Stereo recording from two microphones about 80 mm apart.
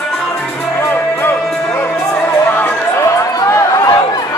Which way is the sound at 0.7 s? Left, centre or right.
Left.